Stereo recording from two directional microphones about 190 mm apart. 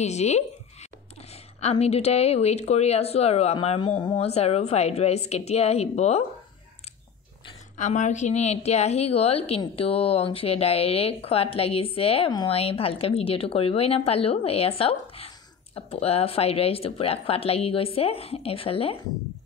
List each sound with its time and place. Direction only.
0.0 s a woman's voice: 35° left (ahead or behind)
7.7 s a woman's voice: 40° left (ahead or behind)